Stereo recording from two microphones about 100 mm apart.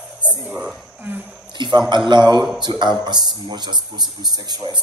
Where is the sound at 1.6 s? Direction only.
50° right (ahead or behind).